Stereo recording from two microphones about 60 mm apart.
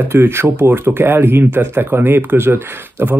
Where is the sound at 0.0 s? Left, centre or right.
Right.